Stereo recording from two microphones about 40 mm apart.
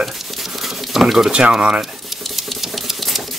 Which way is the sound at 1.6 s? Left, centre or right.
Centre.